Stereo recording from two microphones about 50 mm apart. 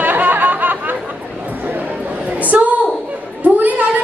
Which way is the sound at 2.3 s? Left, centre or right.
Right.